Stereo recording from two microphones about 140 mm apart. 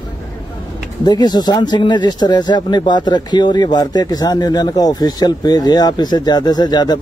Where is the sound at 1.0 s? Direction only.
30° left (ahead or behind).